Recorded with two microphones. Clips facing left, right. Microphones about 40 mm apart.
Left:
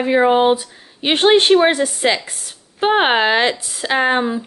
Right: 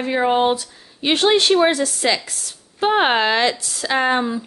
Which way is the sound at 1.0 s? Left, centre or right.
Left.